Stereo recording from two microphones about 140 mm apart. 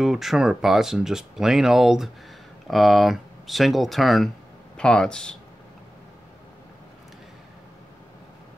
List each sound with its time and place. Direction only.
0.0 s speech: centre (ahead or behind)